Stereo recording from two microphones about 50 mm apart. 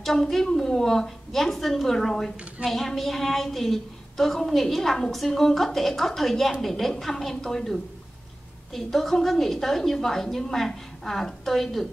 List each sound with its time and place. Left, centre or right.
0.0 s a woman's voice: centre